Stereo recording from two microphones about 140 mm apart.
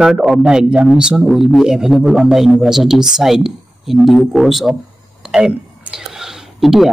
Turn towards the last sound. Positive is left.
turn(degrees=0)  # may be behind; listen again after turning